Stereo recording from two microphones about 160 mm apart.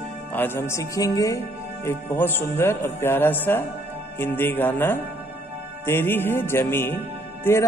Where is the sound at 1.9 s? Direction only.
15° left (ahead or behind).